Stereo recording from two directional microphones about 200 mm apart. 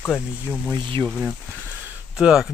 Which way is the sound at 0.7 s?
25° right (ahead or behind).